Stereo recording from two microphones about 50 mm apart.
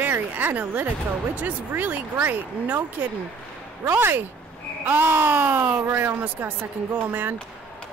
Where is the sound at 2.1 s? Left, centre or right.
Right.